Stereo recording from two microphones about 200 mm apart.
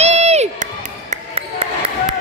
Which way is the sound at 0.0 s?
35° right (ahead or behind).